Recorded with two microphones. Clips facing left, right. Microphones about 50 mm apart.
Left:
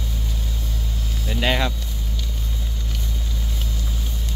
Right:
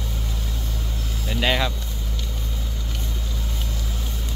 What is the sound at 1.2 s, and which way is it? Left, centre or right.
Vehicle, centre.